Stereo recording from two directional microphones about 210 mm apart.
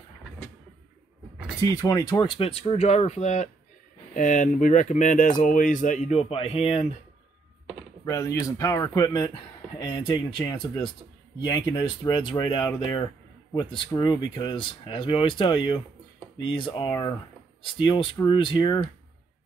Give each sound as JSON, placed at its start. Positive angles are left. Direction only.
{"t": 1.6, "sound": "speech", "side_deg": 15}
{"t": 8.0, "sound": "speech", "side_deg": 15}